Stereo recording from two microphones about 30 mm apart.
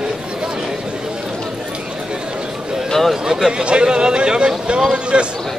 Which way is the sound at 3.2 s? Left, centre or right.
Right.